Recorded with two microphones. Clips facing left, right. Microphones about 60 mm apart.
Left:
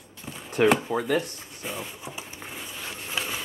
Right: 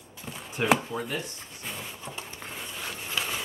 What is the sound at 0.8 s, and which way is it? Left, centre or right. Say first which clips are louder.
Speech: left 7 dB; left.